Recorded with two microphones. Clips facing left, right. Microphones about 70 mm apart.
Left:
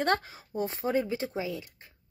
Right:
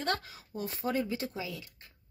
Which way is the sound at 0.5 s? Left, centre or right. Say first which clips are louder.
Left 4 dB; left.